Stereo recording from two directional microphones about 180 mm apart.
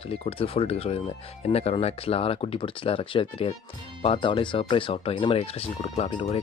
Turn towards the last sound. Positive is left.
turn(degrees=35)  # may be behind; listen again after turning